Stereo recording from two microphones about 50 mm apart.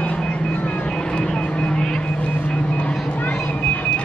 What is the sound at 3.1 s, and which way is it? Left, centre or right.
Vehicle, left.